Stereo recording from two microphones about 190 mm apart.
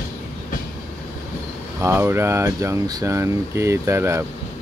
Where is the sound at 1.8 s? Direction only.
15° right (ahead or behind).